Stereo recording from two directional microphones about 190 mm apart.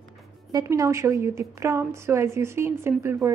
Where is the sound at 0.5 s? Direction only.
20° right (ahead or behind).